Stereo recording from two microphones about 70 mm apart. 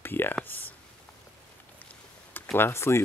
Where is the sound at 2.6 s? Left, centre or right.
Left.